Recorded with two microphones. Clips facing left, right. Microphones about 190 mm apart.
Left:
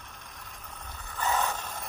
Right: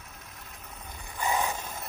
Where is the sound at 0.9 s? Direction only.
10° right (ahead or behind).